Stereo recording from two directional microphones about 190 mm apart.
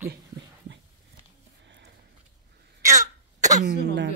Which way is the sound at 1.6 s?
70° right (ahead or behind).